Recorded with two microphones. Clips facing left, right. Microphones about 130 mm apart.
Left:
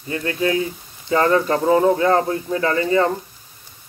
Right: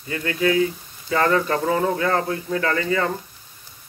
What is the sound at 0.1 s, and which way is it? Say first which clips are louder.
Speech: even; 30° left (ahead or behind).